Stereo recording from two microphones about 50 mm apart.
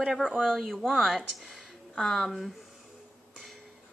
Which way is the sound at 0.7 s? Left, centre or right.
Centre.